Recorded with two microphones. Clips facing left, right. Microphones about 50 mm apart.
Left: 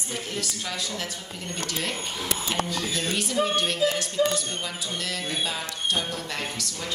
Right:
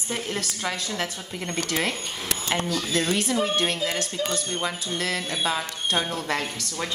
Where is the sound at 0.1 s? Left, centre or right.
Right.